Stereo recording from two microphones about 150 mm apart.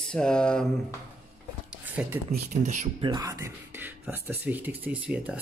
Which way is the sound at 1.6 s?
10° right (ahead or behind).